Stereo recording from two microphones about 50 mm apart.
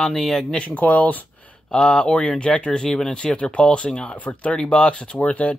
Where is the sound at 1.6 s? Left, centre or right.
Centre.